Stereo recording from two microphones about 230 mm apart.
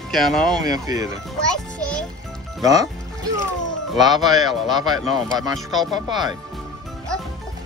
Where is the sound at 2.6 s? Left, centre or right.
Centre.